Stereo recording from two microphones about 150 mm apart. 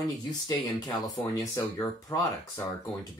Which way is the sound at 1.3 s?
20° left (ahead or behind).